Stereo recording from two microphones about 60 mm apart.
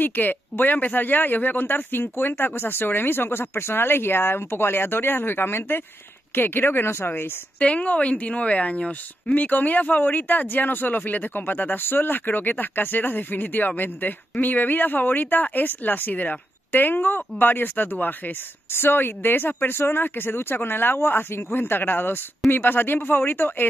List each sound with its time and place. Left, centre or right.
0.0 s a woman's voice: left
7.5 s a woman's voice: left